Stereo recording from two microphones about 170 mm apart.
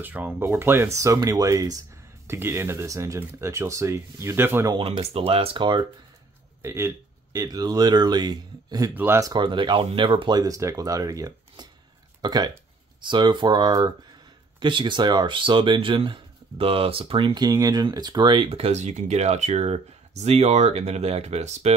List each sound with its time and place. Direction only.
0.0 s speech: 10° right (ahead or behind)
4.7 s speech: 30° right (ahead or behind)
6.6 s speech: 15° right (ahead or behind); by 21.7 s 40° right (ahead or behind)